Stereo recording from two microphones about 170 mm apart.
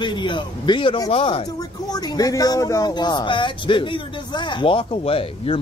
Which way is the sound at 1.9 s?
20° left (ahead or behind).